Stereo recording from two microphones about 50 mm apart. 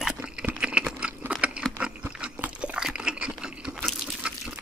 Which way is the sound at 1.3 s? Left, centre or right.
Right.